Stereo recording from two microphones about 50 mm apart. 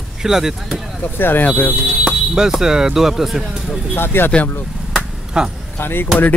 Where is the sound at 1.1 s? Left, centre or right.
Left.